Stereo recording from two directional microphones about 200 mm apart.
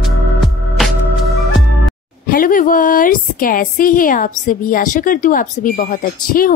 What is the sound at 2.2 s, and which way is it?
A woman's voice, 45° left (ahead or behind).